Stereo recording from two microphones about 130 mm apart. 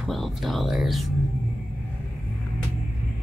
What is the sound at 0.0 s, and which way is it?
Speech, centre (ahead or behind).